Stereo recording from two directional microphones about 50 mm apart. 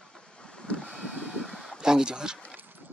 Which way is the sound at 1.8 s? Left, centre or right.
Centre.